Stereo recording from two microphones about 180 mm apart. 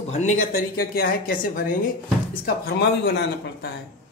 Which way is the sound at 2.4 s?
60° left (ahead or behind).